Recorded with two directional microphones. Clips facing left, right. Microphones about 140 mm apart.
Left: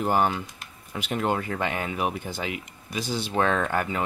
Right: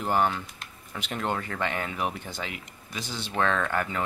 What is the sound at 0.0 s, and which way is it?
Speech, 10° left (ahead or behind).